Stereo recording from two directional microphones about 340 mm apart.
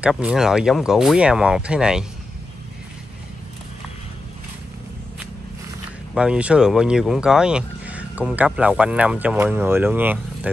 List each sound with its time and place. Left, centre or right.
0.0 s speech: centre
6.1 s speech: centre